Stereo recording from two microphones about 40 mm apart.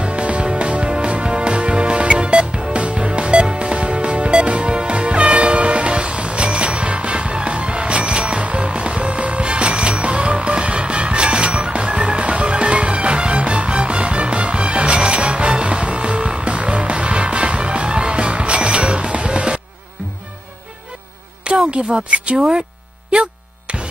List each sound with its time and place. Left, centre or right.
0.0 s music: right
5.3 s train horn: right
9.4 s music: right
21.5 s speech: right